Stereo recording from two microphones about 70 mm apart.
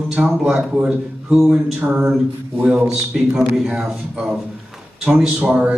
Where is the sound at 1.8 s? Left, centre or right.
Right.